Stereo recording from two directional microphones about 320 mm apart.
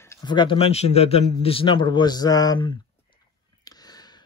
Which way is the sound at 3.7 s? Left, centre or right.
Centre.